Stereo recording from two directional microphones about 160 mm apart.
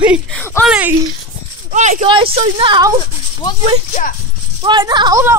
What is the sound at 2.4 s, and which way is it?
Speech, 30° right (ahead or behind).